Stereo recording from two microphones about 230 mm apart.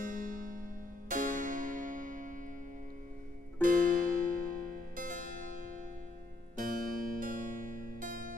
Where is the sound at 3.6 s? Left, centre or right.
Right.